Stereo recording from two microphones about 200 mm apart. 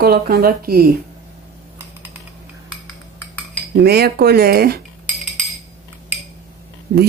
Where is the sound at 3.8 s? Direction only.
55° right (ahead or behind).